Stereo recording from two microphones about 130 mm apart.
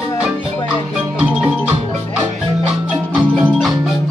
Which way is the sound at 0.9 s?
5° right (ahead or behind).